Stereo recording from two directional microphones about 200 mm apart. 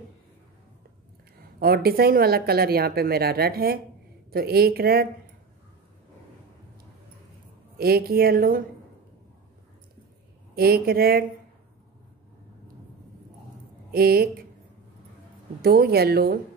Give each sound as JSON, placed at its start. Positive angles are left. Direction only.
{"t": 1.6, "sound": "speech", "side_deg": -50}
{"t": 7.7, "sound": "speech", "side_deg": -50}
{"t": 10.5, "sound": "speech", "side_deg": -50}
{"t": 13.9, "sound": "speech", "side_deg": -50}
{"t": 15.6, "sound": "speech", "side_deg": -50}